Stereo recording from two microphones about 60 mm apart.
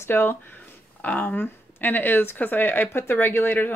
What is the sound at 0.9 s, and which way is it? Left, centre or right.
Speech, left.